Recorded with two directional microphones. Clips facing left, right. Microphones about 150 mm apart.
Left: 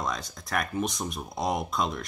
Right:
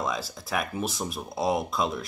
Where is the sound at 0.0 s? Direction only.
5° right (ahead or behind).